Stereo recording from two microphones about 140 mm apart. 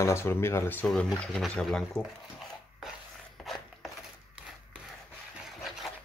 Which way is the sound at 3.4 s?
Centre (ahead or behind).